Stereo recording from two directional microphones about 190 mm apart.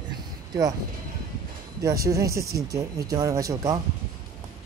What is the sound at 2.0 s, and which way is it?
Speech, 15° right (ahead or behind).